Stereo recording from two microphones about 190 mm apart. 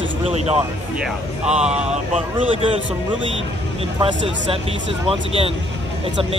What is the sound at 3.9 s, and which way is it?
Speech, 25° right (ahead or behind).